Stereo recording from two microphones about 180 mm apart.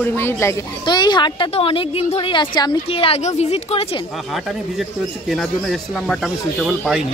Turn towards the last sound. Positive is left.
turn(degrees=-5)  # may be behind; listen again after turning